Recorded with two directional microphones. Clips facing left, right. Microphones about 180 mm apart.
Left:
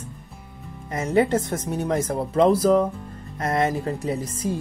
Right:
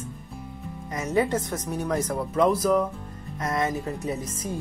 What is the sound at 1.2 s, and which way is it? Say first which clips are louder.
Speech: left 4 dB; 25° left (ahead or behind).